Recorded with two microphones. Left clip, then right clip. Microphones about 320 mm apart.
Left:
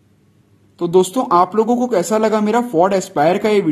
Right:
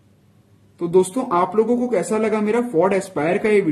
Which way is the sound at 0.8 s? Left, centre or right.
Centre.